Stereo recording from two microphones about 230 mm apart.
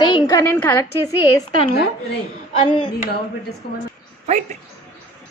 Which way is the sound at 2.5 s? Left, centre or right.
Left.